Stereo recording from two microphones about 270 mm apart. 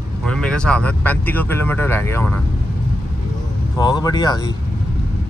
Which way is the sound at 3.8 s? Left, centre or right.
Centre.